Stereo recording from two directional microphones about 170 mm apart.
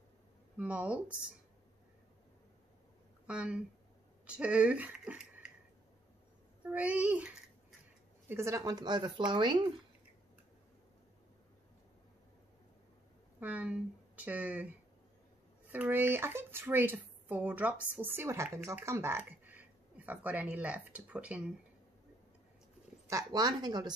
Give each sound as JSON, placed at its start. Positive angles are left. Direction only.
{"t": 0.6, "sound": "speech", "side_deg": -5}
{"t": 3.3, "sound": "speech", "side_deg": -5}
{"t": 6.6, "sound": "speech", "side_deg": -10}
{"t": 13.4, "sound": "speech", "side_deg": -10}
{"t": 15.7, "sound": "speech", "side_deg": -10}
{"t": 23.0, "sound": "speech", "side_deg": -20}